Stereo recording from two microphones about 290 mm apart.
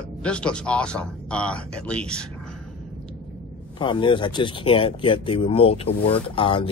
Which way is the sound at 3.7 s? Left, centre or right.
Centre.